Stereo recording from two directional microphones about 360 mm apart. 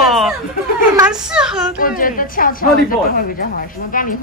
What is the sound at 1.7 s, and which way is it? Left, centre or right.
A woman's voice, left.